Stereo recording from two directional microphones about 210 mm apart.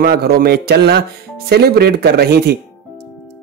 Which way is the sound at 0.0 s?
50° right (ahead or behind).